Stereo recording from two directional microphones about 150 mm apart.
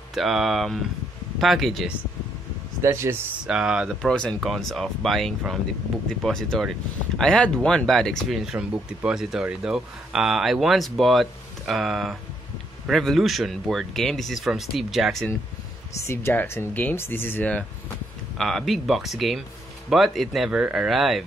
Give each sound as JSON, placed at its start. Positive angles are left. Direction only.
{"t": 0.1, "sound": "speech", "side_deg": 0}
{"t": 2.8, "sound": "speech", "side_deg": -15}
{"t": 3.4, "sound": "speech", "side_deg": -5}
{"t": 4.1, "sound": "speech", "side_deg": 5}
{"t": 16.1, "sound": "speech", "side_deg": 15}